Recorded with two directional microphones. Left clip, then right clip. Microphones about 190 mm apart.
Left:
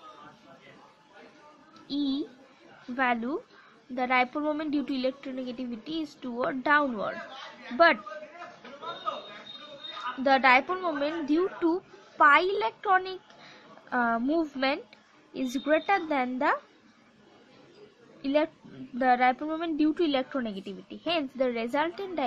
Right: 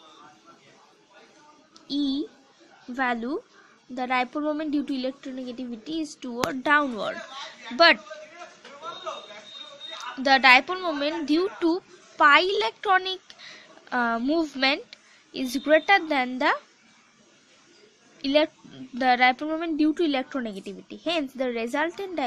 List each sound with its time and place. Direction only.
1.9 s a woman's voice: 25° right (ahead or behind)
10.2 s a woman's voice: 20° right (ahead or behind)
18.2 s a woman's voice: 25° right (ahead or behind)